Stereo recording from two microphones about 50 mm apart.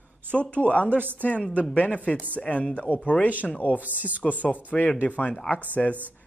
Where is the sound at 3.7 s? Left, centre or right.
Right.